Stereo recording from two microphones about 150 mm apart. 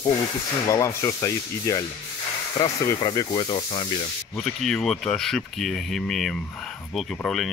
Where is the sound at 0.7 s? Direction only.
20° left (ahead or behind).